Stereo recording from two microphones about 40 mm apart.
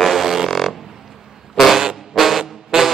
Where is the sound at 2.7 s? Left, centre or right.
Centre.